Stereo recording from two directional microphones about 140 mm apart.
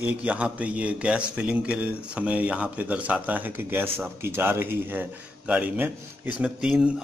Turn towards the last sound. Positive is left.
turn(degrees=-5)  # may be behind; listen again after turning